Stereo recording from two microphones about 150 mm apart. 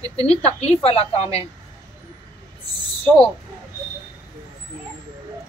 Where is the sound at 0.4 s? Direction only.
45° left (ahead or behind).